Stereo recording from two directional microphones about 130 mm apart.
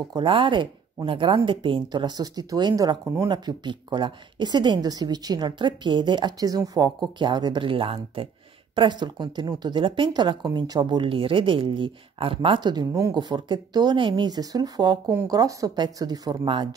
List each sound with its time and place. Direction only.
0.1 s speech: 40° right (ahead or behind)